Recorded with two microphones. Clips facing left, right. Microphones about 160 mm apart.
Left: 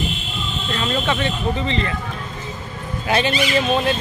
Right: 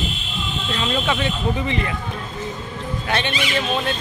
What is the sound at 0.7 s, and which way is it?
Speech, 10° right (ahead or behind).